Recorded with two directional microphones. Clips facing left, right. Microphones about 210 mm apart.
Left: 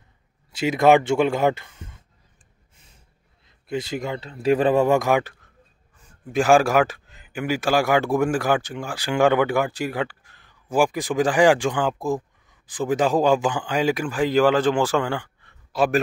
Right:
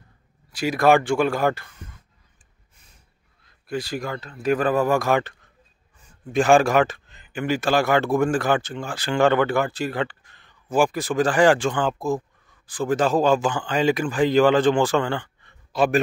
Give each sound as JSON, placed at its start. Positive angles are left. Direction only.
{"t": 0.5, "sound": "speech", "side_deg": 25}
{"t": 3.4, "sound": "a man's voice", "side_deg": 20}